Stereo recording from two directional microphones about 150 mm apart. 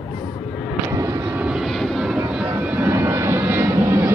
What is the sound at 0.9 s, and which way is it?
Vehicle, 20° right (ahead or behind).